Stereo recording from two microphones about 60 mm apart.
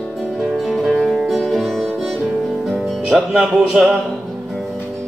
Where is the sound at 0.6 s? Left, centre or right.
Centre.